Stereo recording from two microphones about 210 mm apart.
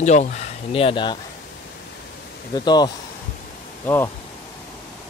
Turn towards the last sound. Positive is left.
turn(degrees=10)  # may be behind; listen again after turning